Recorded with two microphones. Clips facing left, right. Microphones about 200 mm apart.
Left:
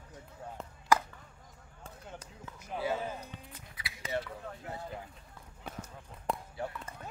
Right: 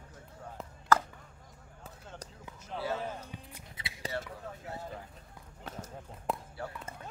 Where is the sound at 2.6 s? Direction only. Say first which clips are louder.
Left 2 dB; 15° left (ahead or behind).